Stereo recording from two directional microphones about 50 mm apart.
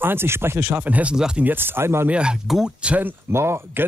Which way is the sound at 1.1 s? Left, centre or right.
Centre.